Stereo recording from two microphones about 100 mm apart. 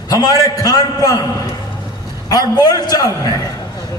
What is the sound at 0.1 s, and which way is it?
A man's voice, 40° left (ahead or behind).